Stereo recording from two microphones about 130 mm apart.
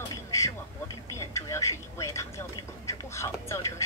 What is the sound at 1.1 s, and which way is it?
Speech, 25° left (ahead or behind).